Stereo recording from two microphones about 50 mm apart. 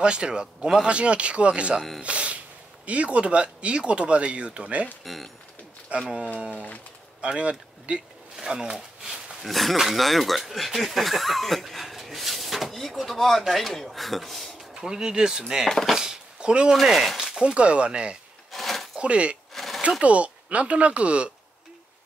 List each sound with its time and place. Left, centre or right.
0.0 s speech: centre
5.0 s speech: centre
6.0 s speech: centre
8.4 s a sound: centre
9.5 s speech: centre
14.7 s speech: centre
15.9 s a sound: centre
16.8 s speech: centre
17.4 s speech: right
18.5 s a sound: centre
18.9 s speech: right
19.5 s a sound: centre
20.0 s speech: right